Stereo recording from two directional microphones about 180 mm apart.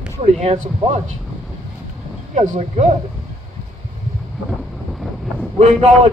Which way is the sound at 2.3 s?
40° right (ahead or behind).